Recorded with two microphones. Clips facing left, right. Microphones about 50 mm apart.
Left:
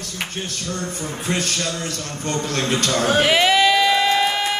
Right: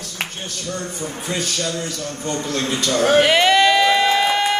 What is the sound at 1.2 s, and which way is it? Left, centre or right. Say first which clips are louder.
Speech: left 1 dB; left.